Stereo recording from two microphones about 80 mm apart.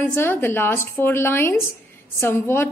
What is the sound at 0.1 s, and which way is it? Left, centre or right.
A woman's voice, left.